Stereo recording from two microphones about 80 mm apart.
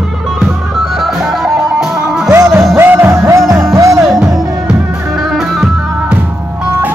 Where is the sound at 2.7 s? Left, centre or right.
Right.